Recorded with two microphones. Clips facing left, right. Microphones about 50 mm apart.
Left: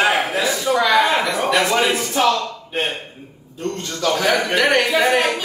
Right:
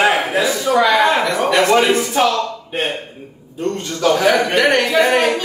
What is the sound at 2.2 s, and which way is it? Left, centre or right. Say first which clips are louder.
Speech: even; centre.